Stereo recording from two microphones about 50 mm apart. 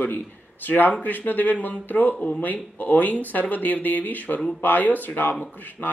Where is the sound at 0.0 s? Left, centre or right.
Left.